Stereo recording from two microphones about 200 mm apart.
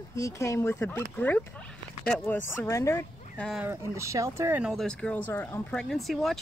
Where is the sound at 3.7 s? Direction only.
15° right (ahead or behind).